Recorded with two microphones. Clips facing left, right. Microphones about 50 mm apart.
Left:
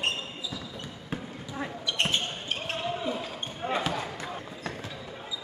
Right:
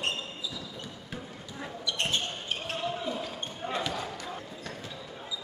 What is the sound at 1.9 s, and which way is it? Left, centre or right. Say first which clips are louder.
Basketball bounce: left 2 dB; left.